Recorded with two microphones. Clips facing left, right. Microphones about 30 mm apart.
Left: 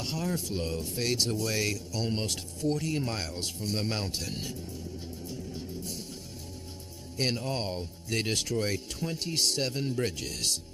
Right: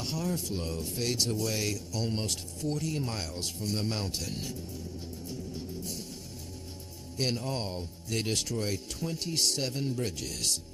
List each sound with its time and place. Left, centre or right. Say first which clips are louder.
0.0 s a man's voice: left 1 dB; centre
1.5 s a man's voice: left 2 dB; left
7.2 s a man's voice: left 1 dB; centre